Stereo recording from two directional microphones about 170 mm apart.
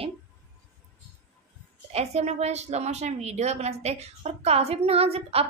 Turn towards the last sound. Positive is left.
turn(degrees=-35)  # may be behind; listen again after turning